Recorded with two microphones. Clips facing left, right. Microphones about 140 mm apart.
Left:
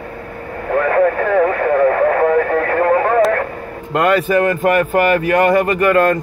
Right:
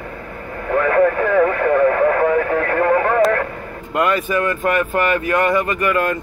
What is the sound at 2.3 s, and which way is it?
Radio, 45° left (ahead or behind).